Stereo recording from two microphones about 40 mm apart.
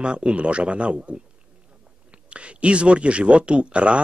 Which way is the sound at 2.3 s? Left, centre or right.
Right.